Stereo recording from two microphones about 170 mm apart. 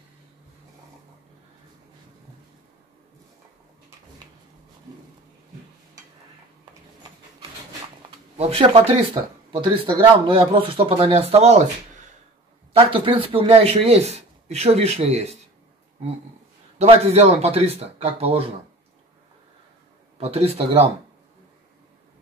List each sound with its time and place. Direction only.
8.4 s speech: 35° right (ahead or behind)
12.7 s speech: 30° right (ahead or behind)
16.7 s speech: 40° right (ahead or behind)
20.2 s speech: 35° right (ahead or behind)